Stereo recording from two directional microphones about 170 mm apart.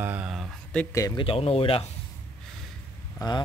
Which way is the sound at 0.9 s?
20° left (ahead or behind).